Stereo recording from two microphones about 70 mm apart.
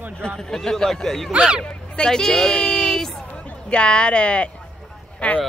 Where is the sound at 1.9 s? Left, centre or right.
Centre.